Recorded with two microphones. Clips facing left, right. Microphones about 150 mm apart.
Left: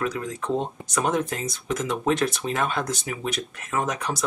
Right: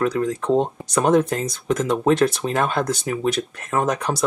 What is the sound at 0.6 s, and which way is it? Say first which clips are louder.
Speech: right 6 dB; 40° right (ahead or behind).